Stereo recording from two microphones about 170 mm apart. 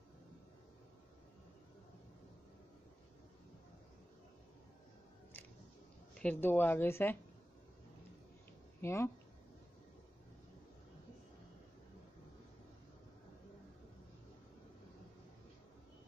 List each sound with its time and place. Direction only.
6.1 s a woman's voice: 10° left (ahead or behind)
8.8 s a woman's voice: 15° left (ahead or behind)